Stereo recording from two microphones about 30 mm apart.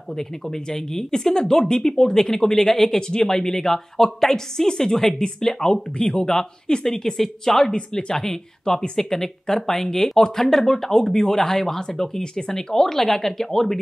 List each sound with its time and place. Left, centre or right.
0.1 s speech: centre
3.0 s speech: left
7.7 s speech: left
8.1 s speech: centre
12.2 s speech: left